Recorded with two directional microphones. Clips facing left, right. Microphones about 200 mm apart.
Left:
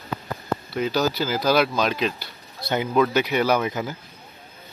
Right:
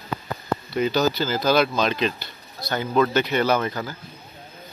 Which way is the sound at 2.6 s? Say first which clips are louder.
Left 2 dB; 20° left (ahead or behind).